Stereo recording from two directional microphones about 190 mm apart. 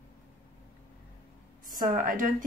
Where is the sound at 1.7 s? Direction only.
45° right (ahead or behind).